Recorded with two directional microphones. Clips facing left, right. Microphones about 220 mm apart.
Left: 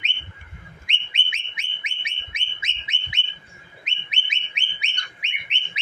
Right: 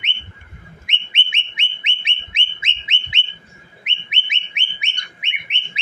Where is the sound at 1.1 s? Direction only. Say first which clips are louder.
Right 5 dB; 25° right (ahead or behind).